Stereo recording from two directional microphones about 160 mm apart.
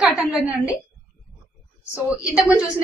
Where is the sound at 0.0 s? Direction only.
5° right (ahead or behind).